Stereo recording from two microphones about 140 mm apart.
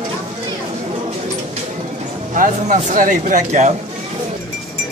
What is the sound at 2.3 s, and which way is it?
Speech, 70° right (ahead or behind).